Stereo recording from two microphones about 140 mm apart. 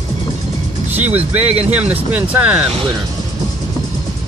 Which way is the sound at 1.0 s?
10° right (ahead or behind).